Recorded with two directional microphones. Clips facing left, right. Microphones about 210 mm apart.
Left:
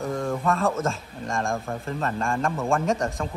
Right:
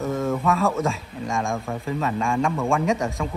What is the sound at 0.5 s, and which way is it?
A man's voice, centre (ahead or behind).